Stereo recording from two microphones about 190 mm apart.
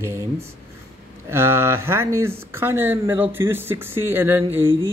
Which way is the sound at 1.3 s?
15° right (ahead or behind).